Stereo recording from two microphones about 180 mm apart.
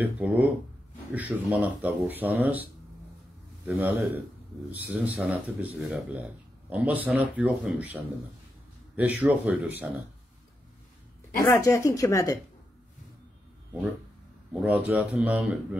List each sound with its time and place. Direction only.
0.0 s speech: 10° right (ahead or behind)
3.6 s speech: 10° right (ahead or behind)
11.4 s speech: 15° left (ahead or behind)
14.5 s speech: 5° right (ahead or behind)